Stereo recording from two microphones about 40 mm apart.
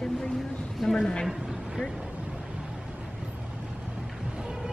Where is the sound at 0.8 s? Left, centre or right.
Centre.